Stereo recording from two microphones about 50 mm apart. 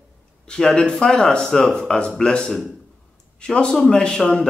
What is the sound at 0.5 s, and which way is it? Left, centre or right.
Speech, centre.